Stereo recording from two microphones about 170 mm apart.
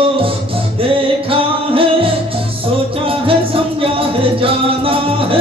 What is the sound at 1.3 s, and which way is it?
Music, 30° right (ahead or behind).